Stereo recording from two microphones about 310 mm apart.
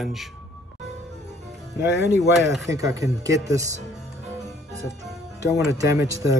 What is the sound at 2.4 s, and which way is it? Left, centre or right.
Speech, centre.